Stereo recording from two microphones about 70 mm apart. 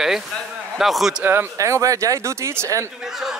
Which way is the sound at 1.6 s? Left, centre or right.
Right.